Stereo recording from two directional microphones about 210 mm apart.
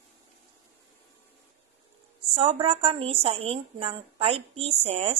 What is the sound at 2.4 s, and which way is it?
A woman's voice, 25° right (ahead or behind).